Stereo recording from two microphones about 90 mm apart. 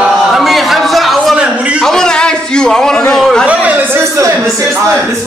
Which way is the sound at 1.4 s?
15° right (ahead or behind).